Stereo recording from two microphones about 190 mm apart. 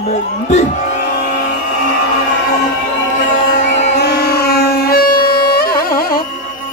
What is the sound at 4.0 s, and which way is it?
Music, 55° left (ahead or behind).